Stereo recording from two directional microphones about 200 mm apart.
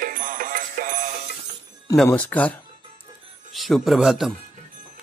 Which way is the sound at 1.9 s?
5° left (ahead or behind).